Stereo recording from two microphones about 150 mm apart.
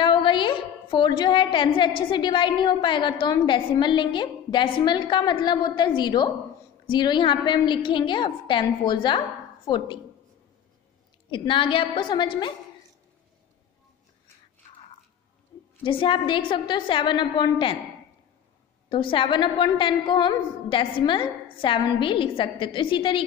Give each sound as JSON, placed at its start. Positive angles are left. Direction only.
{"t": 0.0, "sound": "a woman's voice", "side_deg": 35}
{"t": 11.2, "sound": "a woman's voice", "side_deg": 35}
{"t": 15.8, "sound": "a woman's voice", "side_deg": 35}
{"t": 18.9, "sound": "a woman's voice", "side_deg": 35}